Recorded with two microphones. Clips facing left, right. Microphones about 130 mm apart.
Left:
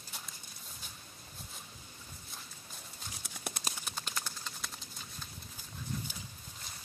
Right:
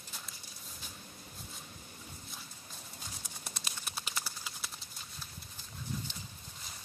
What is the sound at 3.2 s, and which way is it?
Clip-clop, 65° left (ahead or behind).